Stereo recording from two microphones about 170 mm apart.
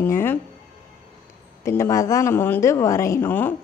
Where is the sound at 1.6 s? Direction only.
15° left (ahead or behind).